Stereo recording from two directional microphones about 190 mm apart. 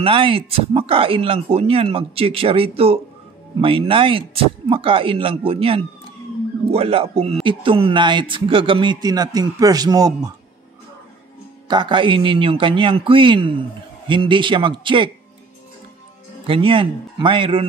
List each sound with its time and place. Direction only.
0.0 s a man's voice: 30° right (ahead or behind)
11.6 s speech: 25° right (ahead or behind)
16.4 s speech: 30° right (ahead or behind)